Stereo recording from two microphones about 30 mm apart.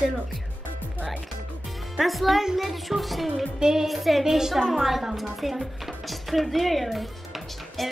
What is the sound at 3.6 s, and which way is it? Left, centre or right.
Music, centre.